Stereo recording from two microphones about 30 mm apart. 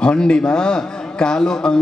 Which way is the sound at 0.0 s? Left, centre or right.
Left.